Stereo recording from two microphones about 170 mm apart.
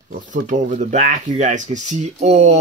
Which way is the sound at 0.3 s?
45° right (ahead or behind).